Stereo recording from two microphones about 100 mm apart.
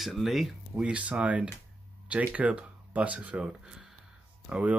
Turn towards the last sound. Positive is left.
turn(degrees=-15)  # may be behind; listen again after turning